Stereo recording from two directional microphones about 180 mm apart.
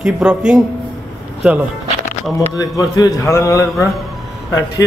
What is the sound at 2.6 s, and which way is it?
A man's voice, 20° left (ahead or behind).